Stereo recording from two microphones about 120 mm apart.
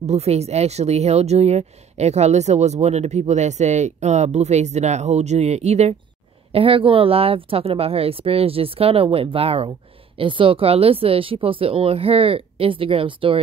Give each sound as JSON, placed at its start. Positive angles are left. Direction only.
{"t": 0.0, "sound": "speech", "side_deg": -65}
{"t": 6.5, "sound": "speech", "side_deg": -50}